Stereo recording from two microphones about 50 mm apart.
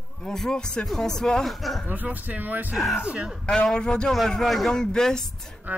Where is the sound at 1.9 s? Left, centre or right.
Right.